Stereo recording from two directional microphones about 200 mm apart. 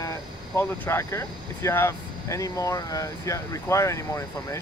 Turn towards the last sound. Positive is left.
turn(degrees=15)  # may be behind; listen again after turning